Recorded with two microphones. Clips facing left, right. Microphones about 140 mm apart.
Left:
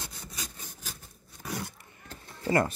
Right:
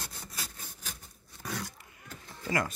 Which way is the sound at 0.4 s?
5° right (ahead or behind).